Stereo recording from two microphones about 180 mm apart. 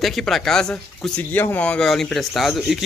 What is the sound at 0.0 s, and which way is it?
Speech, centre (ahead or behind).